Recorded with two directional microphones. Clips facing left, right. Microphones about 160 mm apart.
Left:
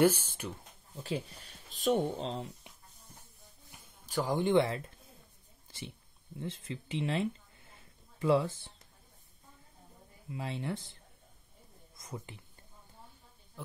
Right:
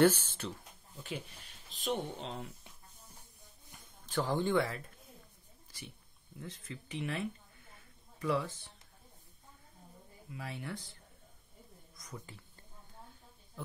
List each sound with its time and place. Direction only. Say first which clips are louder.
0.0 s speech: even; 10° left (ahead or behind)
1.0 s speech: left 6 dB; 35° left (ahead or behind)
3.7 s speech: left 1 dB; 10° left (ahead or behind)
6.3 s speech: left 6 dB; 25° left (ahead or behind)
10.3 s speech: left 5 dB; 25° left (ahead or behind)
12.0 s speech: left 4 dB; 20° left (ahead or behind)